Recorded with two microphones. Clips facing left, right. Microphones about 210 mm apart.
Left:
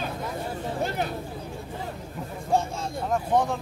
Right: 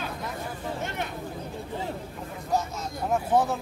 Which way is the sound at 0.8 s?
35° left (ahead or behind).